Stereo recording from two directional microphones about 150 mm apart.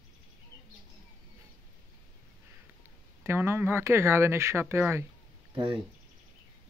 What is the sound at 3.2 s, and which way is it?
Speech, 15° right (ahead or behind).